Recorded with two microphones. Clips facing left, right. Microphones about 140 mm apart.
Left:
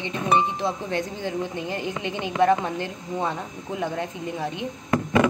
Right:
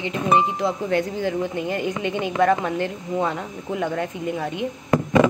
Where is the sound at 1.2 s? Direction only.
20° left (ahead or behind).